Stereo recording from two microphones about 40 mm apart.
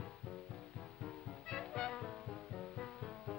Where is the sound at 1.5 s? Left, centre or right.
Left.